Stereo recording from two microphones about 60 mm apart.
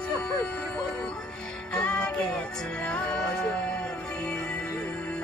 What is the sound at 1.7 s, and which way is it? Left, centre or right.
Music, centre.